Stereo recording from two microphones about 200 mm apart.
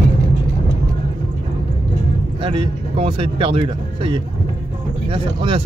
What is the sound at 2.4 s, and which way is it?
Speech, 25° right (ahead or behind).